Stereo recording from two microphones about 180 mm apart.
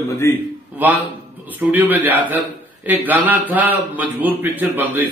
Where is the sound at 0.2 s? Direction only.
15° left (ahead or behind).